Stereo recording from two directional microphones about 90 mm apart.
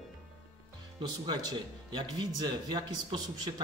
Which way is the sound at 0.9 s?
55° right (ahead or behind).